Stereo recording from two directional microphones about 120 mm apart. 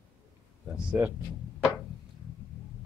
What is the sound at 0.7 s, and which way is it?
Speech, 10° right (ahead or behind).